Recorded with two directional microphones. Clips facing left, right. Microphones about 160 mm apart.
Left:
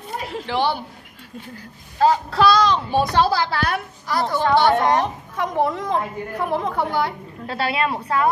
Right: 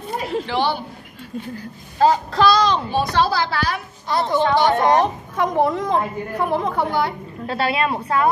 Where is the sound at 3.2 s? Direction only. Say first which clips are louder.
Even; 60° left (ahead or behind).